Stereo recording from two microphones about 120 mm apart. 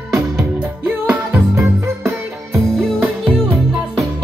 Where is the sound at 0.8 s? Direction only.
15° right (ahead or behind).